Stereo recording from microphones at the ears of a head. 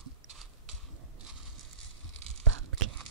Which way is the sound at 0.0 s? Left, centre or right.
Right.